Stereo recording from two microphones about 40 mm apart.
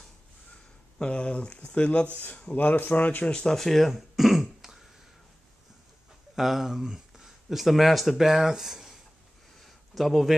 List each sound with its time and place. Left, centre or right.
0.9 s speech: left
2.5 s speech: left
3.3 s speech: centre
3.5 s speech: centre
3.9 s throat clearing: centre
6.3 s speech: centre
9.6 s a sound: centre